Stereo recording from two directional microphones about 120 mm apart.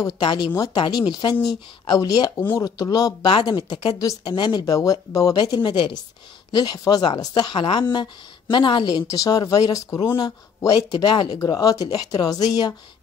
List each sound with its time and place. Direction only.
0.0 s a woman's voice: 40° left (ahead or behind)